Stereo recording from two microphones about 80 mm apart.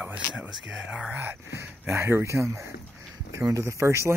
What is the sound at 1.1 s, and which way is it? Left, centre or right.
Speech, right.